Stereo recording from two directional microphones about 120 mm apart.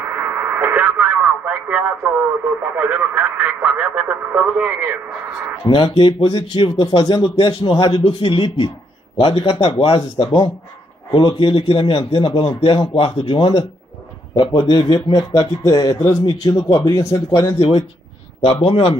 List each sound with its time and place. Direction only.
0.0 s speech: 15° right (ahead or behind)
5.7 s speech: 55° left (ahead or behind)
6.0 s a man's voice: 40° left (ahead or behind)
17.6 s a man's voice: 55° left (ahead or behind)